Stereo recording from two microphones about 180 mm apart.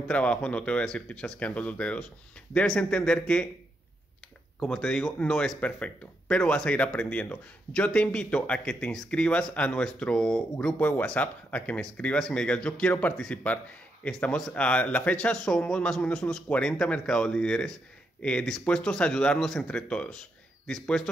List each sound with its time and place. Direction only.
0.1 s speech: 5° left (ahead or behind)
4.6 s speech: 5° left (ahead or behind)